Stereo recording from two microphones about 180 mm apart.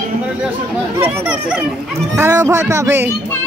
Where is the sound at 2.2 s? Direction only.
15° right (ahead or behind).